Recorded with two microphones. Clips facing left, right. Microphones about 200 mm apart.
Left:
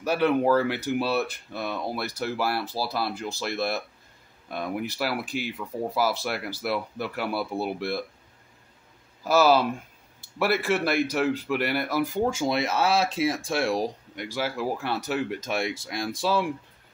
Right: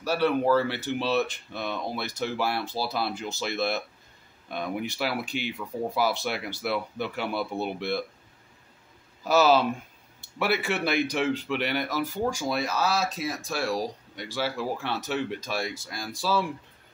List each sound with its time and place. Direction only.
0.0 s speech: 15° left (ahead or behind)
9.3 s speech: 5° left (ahead or behind)
15.5 s speech: 25° left (ahead or behind)